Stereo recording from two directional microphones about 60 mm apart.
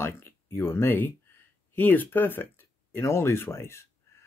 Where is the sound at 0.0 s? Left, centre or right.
Left.